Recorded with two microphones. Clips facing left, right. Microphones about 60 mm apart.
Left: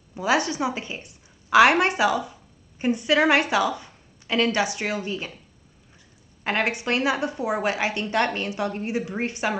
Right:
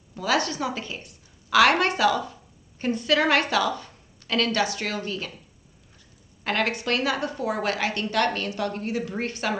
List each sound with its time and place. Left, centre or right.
0.1 s a woman's voice: left
6.4 s a woman's voice: left